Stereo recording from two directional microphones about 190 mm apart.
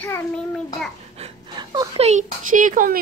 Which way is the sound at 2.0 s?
35° right (ahead or behind).